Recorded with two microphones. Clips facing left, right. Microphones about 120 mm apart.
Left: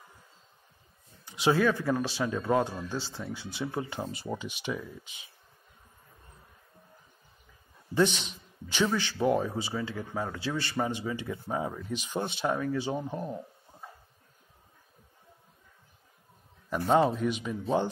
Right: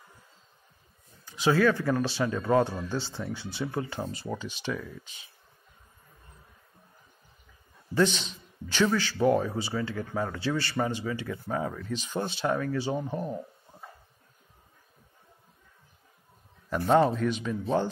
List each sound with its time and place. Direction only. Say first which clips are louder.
1.2 s speech: right 2 dB; 20° left (ahead or behind)
7.9 s speech: right 1 dB; 15° left (ahead or behind)
13.0 s speech: right 2 dB; centre (ahead or behind)
16.7 s speech: right 2 dB; 5° left (ahead or behind)